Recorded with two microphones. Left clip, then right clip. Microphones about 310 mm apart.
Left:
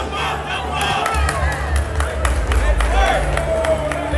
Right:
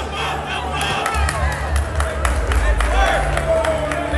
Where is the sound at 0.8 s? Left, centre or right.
Centre.